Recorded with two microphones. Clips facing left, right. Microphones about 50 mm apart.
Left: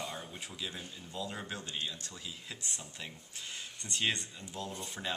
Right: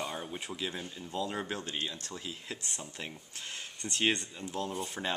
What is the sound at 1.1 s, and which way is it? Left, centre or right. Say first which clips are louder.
Speech: right 5 dB; right.